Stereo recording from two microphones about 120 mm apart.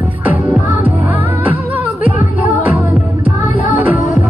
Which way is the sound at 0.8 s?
15° right (ahead or behind).